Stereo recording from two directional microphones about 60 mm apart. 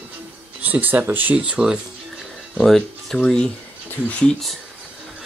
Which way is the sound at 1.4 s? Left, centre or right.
Centre.